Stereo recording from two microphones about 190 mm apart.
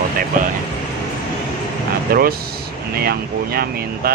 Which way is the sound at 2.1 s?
50° right (ahead or behind).